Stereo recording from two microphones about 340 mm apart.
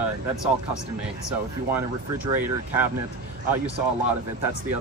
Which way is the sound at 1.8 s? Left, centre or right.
Centre.